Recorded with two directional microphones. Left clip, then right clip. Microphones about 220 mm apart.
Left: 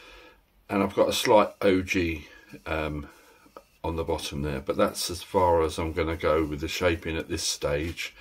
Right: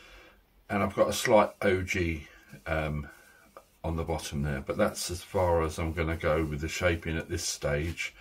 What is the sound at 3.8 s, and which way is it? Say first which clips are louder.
Speech: left 4 dB; 45° left (ahead or behind).